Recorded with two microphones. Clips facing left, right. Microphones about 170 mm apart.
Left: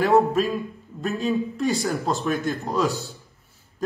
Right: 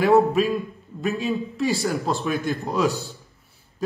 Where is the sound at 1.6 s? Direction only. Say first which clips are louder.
Even; centre (ahead or behind).